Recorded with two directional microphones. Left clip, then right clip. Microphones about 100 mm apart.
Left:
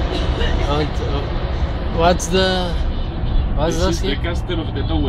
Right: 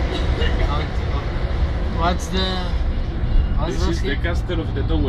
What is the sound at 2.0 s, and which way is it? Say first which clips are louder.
Speech: left 7 dB; 50° left (ahead or behind).